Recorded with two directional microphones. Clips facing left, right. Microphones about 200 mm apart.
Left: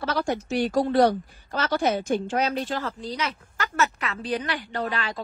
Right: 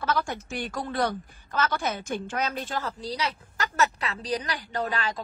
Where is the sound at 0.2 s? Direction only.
50° left (ahead or behind).